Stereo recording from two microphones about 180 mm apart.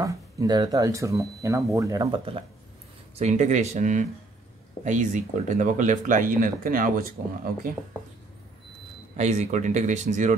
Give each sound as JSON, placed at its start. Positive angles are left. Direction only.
{"t": 0.0, "sound": "speech", "side_deg": -20}
{"t": 3.2, "sound": "speech", "side_deg": -40}
{"t": 9.1, "sound": "speech", "side_deg": -40}